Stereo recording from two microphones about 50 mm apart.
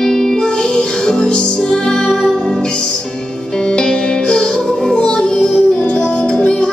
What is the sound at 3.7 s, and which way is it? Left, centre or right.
Music, centre.